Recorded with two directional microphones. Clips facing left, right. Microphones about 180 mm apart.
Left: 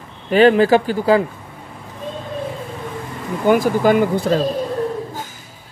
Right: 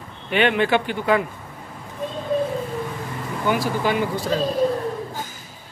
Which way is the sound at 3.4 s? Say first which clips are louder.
Left 8 dB; 50° left (ahead or behind).